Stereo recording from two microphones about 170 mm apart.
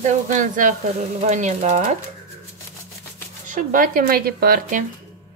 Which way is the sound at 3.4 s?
50° right (ahead or behind).